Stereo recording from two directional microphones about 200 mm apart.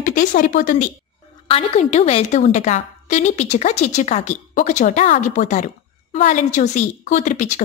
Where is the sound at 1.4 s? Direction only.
30° left (ahead or behind).